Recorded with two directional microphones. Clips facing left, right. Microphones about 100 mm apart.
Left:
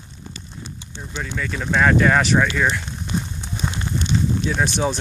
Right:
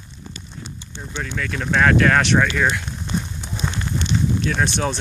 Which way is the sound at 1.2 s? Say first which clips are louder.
Even; 5° left (ahead or behind).